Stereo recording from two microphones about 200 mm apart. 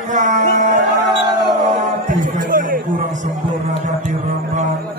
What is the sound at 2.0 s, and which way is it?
Music, 40° right (ahead or behind).